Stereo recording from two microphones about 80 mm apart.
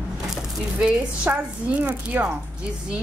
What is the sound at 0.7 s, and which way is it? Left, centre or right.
Speech, centre.